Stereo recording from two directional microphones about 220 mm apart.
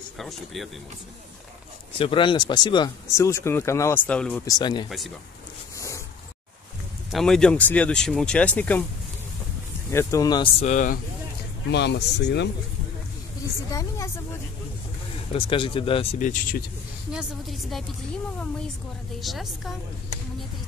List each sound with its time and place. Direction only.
0.2 s speech: centre (ahead or behind)
2.0 s speech: 25° left (ahead or behind); by 4.4 s 5° left (ahead or behind)
4.5 s speech: 20° left (ahead or behind)
4.8 s speech: centre (ahead or behind)
5.8 s a sound: 15° left (ahead or behind)
7.1 s speech: centre (ahead or behind)
9.8 s speech: 15° left (ahead or behind); by 11.0 s 35° left (ahead or behind)
11.7 s speech: 50° left (ahead or behind)
13.7 s speech: 15° left (ahead or behind)
15.3 s speech: 25° left (ahead or behind)
17.1 s speech: 5° right (ahead or behind)
19.1 s speech: centre (ahead or behind)